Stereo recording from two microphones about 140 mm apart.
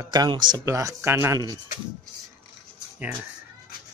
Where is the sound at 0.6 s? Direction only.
20° right (ahead or behind).